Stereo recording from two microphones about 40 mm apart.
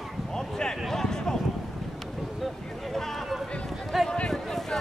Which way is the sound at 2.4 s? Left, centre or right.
Centre.